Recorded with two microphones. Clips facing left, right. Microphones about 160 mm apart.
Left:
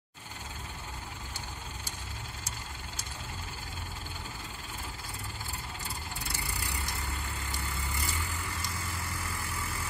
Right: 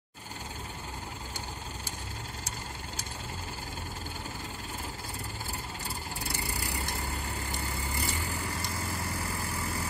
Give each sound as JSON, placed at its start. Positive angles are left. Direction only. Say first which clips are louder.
{"t": 6.4, "sound": "vehicle", "louder": "right 3 dB", "side_deg": -35}